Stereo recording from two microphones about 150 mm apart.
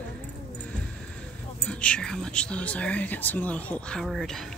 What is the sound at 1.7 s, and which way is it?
Speech, 5° left (ahead or behind).